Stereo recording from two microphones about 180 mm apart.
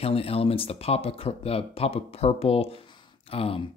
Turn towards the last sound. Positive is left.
turn(degrees=30)  # may be behind; listen again after turning